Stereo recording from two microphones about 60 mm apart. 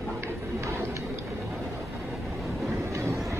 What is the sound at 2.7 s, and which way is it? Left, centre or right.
Train, right.